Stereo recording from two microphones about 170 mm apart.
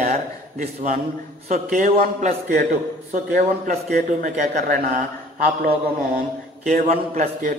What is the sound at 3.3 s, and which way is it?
Speech, 65° right (ahead or behind).